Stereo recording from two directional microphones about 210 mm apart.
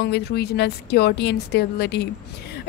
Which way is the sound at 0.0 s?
50° left (ahead or behind).